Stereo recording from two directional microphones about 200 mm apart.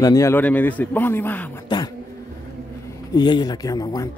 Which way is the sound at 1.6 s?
20° left (ahead or behind).